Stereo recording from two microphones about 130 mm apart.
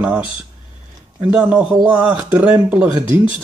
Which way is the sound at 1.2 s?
10° right (ahead or behind).